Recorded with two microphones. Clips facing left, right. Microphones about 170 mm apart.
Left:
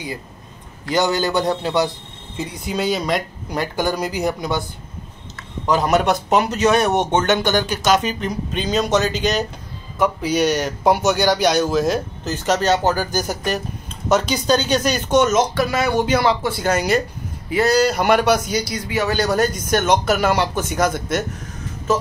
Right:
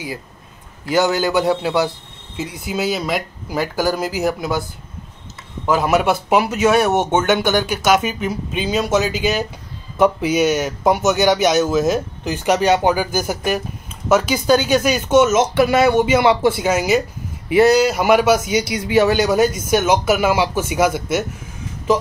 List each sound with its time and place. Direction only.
0.8 s speech: 5° right (ahead or behind)
5.7 s speech: 5° right (ahead or behind)
15.4 s speech: 25° right (ahead or behind)
16.0 s speech: 5° right (ahead or behind)
18.9 s speech: 25° right (ahead or behind)
19.1 s speech: 5° right (ahead or behind)